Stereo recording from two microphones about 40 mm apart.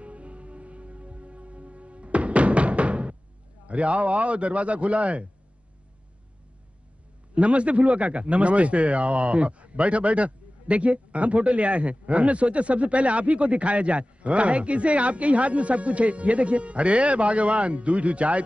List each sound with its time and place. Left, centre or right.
0.0 s music: right
3.6 s a man's voice: right
7.3 s a man's voice: right